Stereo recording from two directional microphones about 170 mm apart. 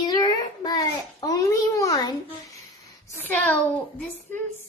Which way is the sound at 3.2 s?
10° left (ahead or behind).